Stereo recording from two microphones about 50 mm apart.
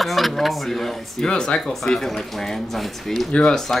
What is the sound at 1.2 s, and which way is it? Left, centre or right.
Speech, centre.